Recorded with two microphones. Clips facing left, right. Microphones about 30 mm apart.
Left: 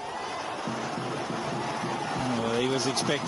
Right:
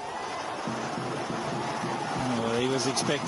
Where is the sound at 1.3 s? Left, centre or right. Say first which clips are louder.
Even; centre.